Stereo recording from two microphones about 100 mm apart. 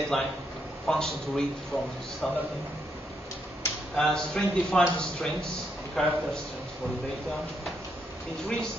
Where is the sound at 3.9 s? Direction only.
5° left (ahead or behind).